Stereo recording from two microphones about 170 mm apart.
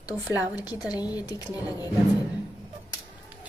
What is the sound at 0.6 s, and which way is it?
A woman's voice, 20° left (ahead or behind).